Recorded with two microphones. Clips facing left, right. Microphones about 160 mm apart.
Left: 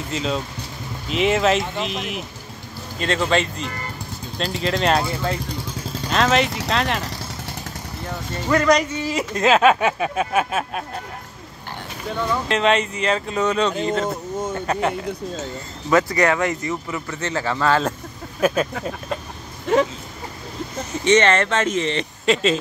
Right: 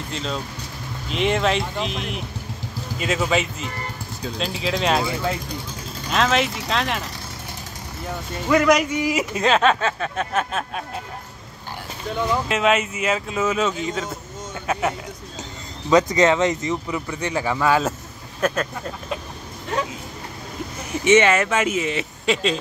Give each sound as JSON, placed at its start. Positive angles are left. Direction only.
{"t": 0.1, "sound": "speech", "side_deg": 0}
{"t": 8.5, "sound": "speech", "side_deg": -10}
{"t": 9.4, "sound": "speech", "side_deg": 5}
{"t": 12.4, "sound": "speech", "side_deg": -5}
{"t": 15.9, "sound": "speech", "side_deg": -20}
{"t": 18.4, "sound": "speech", "side_deg": 10}
{"t": 20.9, "sound": "speech", "side_deg": -10}